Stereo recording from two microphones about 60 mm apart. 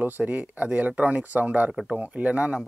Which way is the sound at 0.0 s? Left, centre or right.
Right.